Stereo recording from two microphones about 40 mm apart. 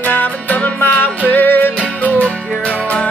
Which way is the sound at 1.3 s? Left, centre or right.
Left.